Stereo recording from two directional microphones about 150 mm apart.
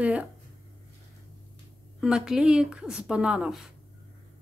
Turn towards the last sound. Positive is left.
turn(degrees=-5)  # may be behind; listen again after turning